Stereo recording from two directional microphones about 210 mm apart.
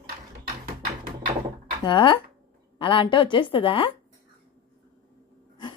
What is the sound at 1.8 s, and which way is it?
A woman's voice, 20° left (ahead or behind).